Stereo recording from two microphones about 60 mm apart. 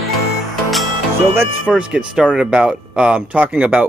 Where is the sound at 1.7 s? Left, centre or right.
Centre.